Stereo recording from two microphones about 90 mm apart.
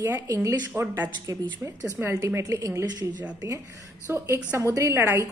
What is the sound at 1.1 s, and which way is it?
Speech, 40° right (ahead or behind).